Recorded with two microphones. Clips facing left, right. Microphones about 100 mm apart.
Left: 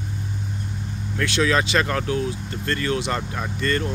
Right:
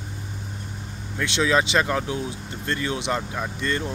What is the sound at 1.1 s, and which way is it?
Speech, 20° right (ahead or behind).